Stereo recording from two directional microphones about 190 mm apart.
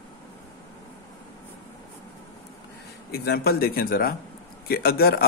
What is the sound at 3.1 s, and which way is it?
Speech, 55° left (ahead or behind).